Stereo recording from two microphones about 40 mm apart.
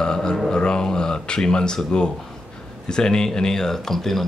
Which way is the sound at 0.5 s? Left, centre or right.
Left.